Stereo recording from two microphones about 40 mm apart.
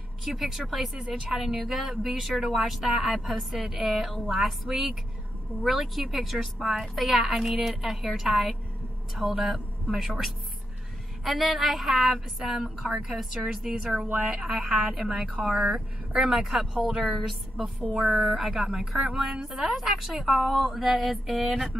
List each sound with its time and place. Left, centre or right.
0.2 s a woman's voice: centre
16.7 s speech: right
17.3 s a woman's voice: centre
18.4 s speech: centre
19.5 s a woman's voice: centre